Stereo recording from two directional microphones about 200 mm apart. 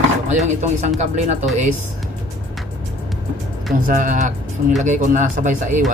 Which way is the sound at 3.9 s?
40° right (ahead or behind).